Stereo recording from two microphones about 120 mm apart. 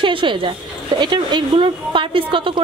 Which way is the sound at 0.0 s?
45° right (ahead or behind).